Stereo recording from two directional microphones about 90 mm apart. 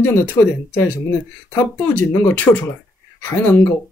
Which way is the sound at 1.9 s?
20° left (ahead or behind).